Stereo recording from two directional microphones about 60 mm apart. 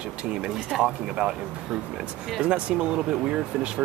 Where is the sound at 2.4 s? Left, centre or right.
Centre.